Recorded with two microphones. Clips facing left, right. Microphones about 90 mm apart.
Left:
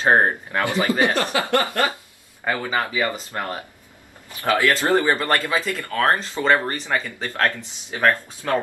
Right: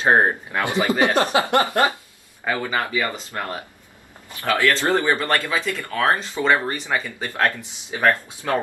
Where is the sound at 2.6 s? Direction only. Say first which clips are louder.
Left 2 dB; 10° left (ahead or behind).